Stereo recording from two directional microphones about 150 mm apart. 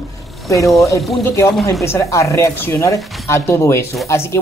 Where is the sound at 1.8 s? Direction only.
20° left (ahead or behind).